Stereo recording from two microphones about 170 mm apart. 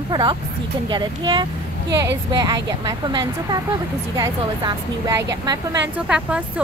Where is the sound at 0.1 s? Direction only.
25° right (ahead or behind).